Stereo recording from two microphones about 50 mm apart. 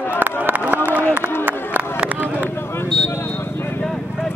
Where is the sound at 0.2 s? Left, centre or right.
Right.